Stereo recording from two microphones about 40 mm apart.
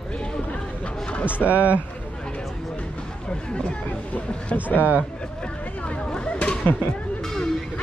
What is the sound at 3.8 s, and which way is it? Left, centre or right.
Speech, left.